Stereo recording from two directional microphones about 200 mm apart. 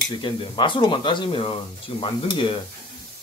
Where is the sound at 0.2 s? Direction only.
25° left (ahead or behind).